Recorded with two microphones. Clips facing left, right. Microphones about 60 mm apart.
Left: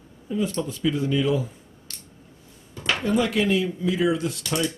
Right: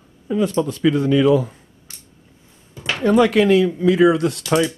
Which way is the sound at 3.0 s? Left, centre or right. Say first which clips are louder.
Right 9 dB; right.